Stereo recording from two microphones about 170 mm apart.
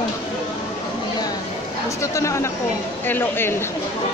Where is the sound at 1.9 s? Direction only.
15° left (ahead or behind).